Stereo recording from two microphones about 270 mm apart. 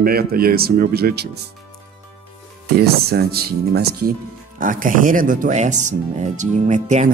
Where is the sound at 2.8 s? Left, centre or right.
Right.